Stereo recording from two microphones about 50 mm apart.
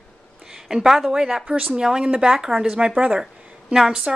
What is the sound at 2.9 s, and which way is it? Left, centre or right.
Speech, right.